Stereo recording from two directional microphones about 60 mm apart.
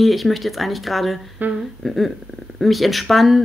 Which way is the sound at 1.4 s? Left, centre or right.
Right.